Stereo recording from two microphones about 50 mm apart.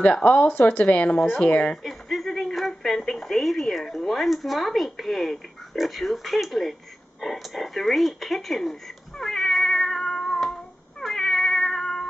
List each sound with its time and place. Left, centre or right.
0.0 s speech: left
1.9 s speech: centre
9.2 s cat: centre